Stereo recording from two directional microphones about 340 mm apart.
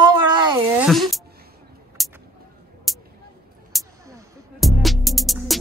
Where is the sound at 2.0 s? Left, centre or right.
Centre.